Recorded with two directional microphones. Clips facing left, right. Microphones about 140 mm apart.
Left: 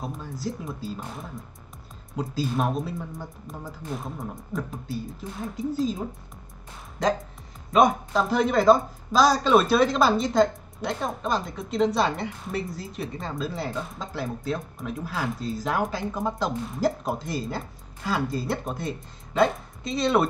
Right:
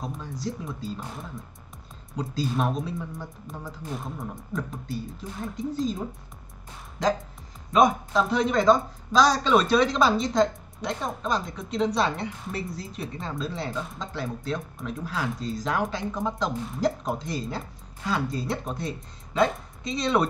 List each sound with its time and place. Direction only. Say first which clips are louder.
0.0 s speech: left 1 dB; 5° left (ahead or behind)
7.7 s speech: even; centre (ahead or behind)